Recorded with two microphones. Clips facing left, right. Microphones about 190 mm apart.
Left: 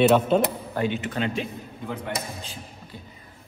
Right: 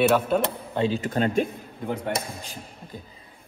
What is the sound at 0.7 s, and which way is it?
Speech, 35° right (ahead or behind).